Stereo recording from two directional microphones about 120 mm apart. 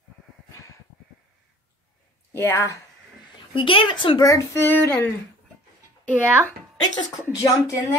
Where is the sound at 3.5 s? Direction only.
45° left (ahead or behind).